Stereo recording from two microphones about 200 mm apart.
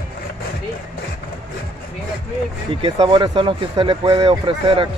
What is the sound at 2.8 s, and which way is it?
Speech, 25° right (ahead or behind).